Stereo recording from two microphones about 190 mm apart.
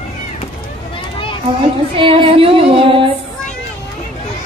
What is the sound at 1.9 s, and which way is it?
Music, 25° right (ahead or behind).